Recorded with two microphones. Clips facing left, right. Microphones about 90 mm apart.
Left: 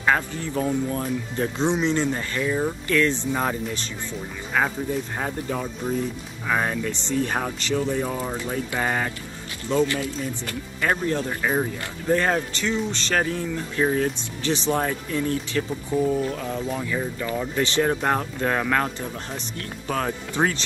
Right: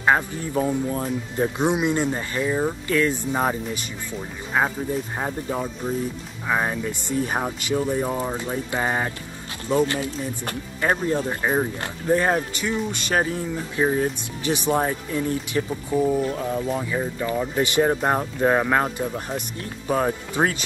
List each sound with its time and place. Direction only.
0.0 s speech: 20° right (ahead or behind)
0.7 s speech: 5° right (ahead or behind)
16.2 s speech: 25° right (ahead or behind)
16.4 s speech: 10° right (ahead or behind)